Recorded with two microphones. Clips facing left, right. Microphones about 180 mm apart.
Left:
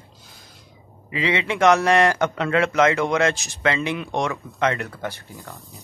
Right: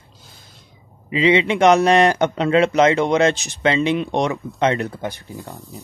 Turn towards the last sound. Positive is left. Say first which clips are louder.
# right 5 dB
turn(degrees=-20)  # may be behind; listen again after turning